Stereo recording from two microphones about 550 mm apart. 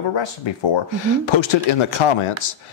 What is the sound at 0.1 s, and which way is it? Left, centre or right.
A man's voice, left.